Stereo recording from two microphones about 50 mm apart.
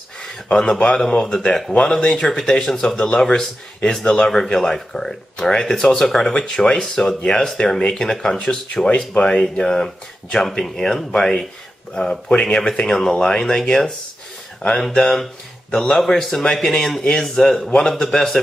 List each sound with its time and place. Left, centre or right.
0.2 s a man's voice: centre
15.0 s speech: centre